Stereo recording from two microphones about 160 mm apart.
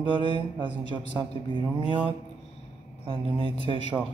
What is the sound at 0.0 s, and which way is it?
Speech, 30° right (ahead or behind).